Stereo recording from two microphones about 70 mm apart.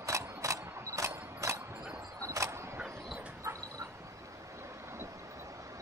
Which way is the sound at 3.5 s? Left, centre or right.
Right.